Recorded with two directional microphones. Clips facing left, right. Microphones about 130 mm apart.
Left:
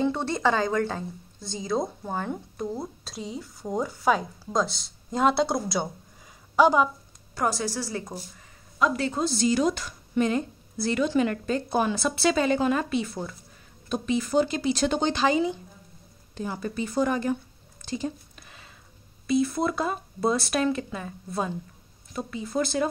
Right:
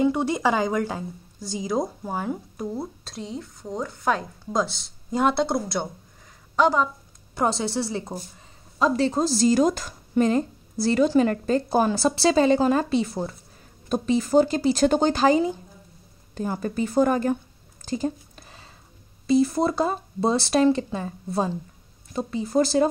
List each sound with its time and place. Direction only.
0.0 s a woman's voice: 10° right (ahead or behind); by 6.9 s 10° left (ahead or behind)
7.3 s a woman's voice: 25° right (ahead or behind); by 17.4 s 45° right (ahead or behind)
17.8 s a sound: 40° right (ahead or behind)
19.2 s a woman's voice: 35° right (ahead or behind)